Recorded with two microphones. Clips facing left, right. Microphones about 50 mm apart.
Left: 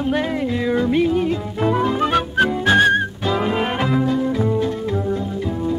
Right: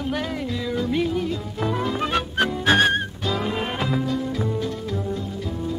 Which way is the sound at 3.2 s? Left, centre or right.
Left.